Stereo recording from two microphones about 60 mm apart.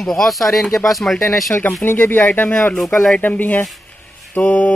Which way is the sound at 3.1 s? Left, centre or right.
Left.